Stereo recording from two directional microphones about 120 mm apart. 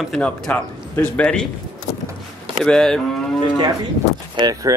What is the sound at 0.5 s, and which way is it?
A man's voice, 15° left (ahead or behind).